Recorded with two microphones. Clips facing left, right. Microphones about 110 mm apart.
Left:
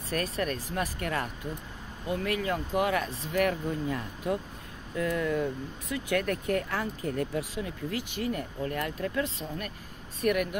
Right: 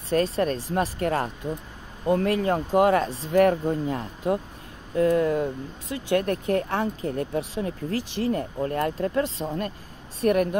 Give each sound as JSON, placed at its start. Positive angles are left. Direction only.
{"t": 0.1, "sound": "speech", "side_deg": -30}